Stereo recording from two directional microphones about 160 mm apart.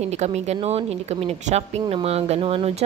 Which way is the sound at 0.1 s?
45° right (ahead or behind).